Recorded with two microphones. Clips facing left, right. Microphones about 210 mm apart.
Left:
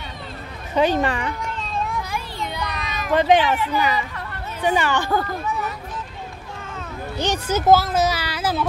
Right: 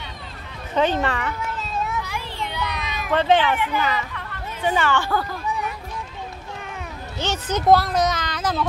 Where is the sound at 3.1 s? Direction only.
15° left (ahead or behind).